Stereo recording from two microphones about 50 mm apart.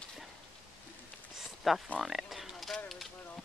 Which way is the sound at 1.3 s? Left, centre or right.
Centre.